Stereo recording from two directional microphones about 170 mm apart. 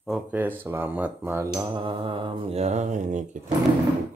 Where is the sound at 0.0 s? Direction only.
5° right (ahead or behind).